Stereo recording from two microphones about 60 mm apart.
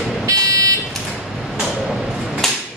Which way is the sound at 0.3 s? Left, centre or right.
Right.